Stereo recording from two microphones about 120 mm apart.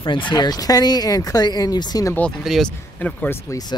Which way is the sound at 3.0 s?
15° left (ahead or behind).